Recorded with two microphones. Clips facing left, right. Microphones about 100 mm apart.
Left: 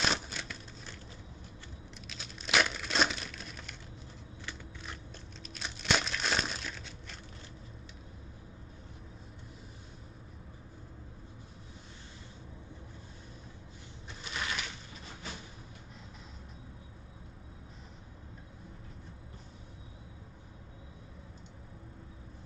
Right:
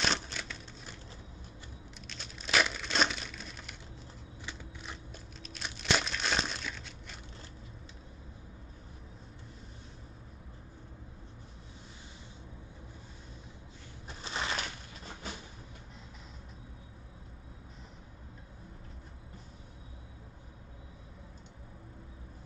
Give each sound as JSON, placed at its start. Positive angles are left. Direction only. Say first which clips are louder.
{"t": 0.1, "sound": "a sound", "louder": "even", "side_deg": 5}
{"t": 2.0, "sound": "crumpling", "louder": "even", "side_deg": 0}
{"t": 5.4, "sound": "crumpling", "louder": "even", "side_deg": 0}
{"t": 14.0, "sound": "crushing", "louder": "right 2 dB", "side_deg": -30}